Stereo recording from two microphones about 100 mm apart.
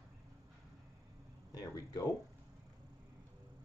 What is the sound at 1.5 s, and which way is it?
Speech, 40° left (ahead or behind).